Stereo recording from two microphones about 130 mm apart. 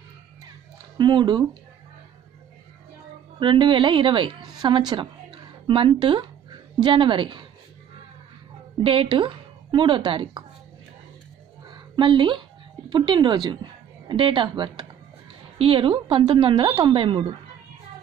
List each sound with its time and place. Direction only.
0.9 s a woman's voice: 35° right (ahead or behind)
3.3 s a woman's voice: 40° right (ahead or behind)
8.8 s a woman's voice: 45° right (ahead or behind)
11.7 s a sound: 35° right (ahead or behind)
12.9 s a woman's voice: 40° right (ahead or behind)
15.5 s a woman's voice: 45° right (ahead or behind)